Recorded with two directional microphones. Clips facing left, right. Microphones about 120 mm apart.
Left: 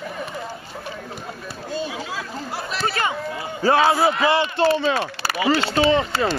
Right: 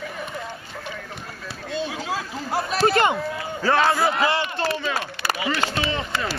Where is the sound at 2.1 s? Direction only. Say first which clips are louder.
Right 3 dB; 45° right (ahead or behind).